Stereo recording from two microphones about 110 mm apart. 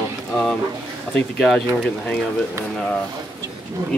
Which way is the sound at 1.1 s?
Centre (ahead or behind).